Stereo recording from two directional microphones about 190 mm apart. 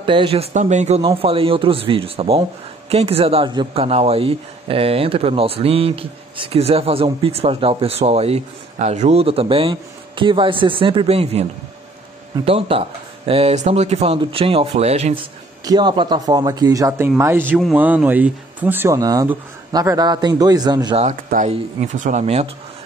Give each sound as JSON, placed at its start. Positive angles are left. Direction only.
{"t": 0.0, "sound": "speech", "side_deg": -25}
{"t": 12.4, "sound": "speech", "side_deg": -30}
{"t": 15.6, "sound": "speech", "side_deg": -20}
{"t": 21.0, "sound": "speech", "side_deg": -40}